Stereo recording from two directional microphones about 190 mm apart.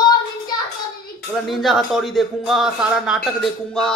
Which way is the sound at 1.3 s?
Centre (ahead or behind).